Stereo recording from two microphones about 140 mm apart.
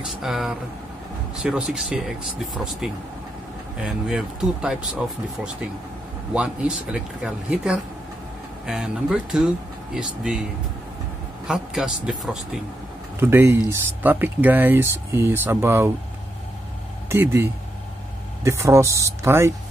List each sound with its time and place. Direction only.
0.0 s a man's voice: centre (ahead or behind)
6.3 s a man's voice: 5° right (ahead or behind)
11.4 s a man's voice: 5° right (ahead or behind)
13.2 s speech: 15° right (ahead or behind)
17.1 s speech: 20° right (ahead or behind)